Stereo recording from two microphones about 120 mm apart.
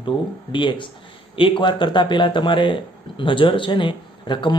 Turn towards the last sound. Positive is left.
turn(degrees=40)  # may be behind; listen again after turning